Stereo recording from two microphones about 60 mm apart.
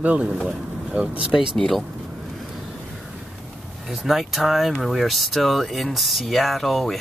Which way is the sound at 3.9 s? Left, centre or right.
Centre.